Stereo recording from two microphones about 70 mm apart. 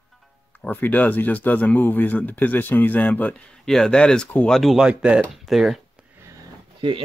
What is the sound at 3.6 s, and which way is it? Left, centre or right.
Speech, centre.